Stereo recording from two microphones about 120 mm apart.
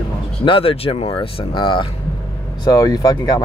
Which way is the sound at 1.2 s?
40° left (ahead or behind).